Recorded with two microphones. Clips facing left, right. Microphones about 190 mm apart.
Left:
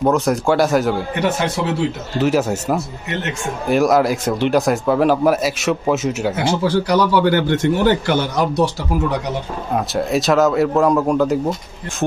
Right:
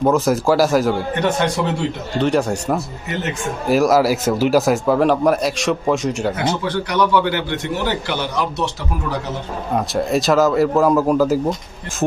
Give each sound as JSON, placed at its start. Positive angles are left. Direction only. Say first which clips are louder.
{"t": 0.0, "sound": "a man's voice", "louder": "right 1 dB", "side_deg": 0}
{"t": 6.6, "sound": "a man's voice", "louder": "left 6 dB", "side_deg": 30}
{"t": 9.8, "sound": "a man's voice", "louder": "even", "side_deg": 0}